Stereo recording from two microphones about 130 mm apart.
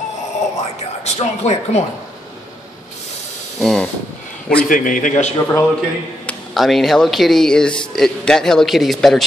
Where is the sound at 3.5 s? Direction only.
Centre (ahead or behind).